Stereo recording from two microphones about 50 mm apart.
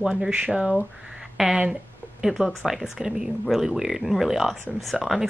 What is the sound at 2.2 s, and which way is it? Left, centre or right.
Speech, centre.